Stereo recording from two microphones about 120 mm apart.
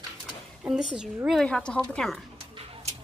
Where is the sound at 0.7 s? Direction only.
5° right (ahead or behind).